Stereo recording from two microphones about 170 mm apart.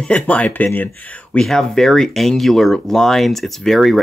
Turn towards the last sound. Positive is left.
turn(degrees=0)  # may be behind; listen again after turning